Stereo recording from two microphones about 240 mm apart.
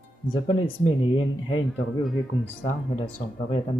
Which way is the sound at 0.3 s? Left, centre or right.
Centre.